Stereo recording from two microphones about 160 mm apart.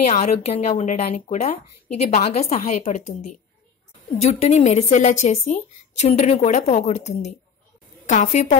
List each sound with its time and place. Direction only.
0.0 s speech: 45° left (ahead or behind)